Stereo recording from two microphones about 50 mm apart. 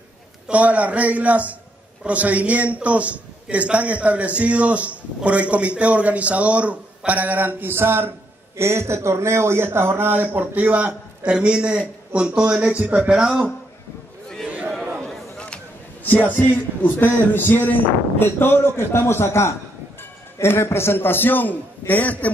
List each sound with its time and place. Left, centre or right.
0.5 s a man's voice: right
7.7 s speech: right
8.5 s a man's voice: right; by 12.8 s centre
16.0 s a sound: left
16.3 s a man's voice: left